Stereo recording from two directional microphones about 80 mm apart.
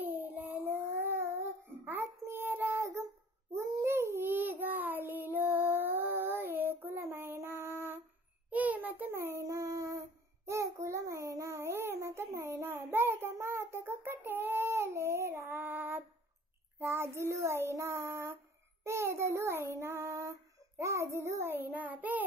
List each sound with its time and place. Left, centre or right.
0.0 s child singing: right
8.5 s child singing: centre